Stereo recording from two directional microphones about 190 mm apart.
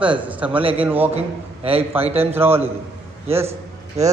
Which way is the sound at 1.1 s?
30° right (ahead or behind).